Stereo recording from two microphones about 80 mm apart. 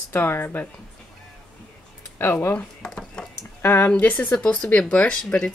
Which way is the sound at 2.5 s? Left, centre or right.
Centre.